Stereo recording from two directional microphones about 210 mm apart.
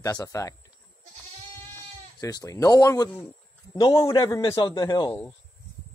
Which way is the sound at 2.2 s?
15° left (ahead or behind).